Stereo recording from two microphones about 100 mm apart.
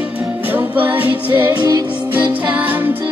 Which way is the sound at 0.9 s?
15° right (ahead or behind).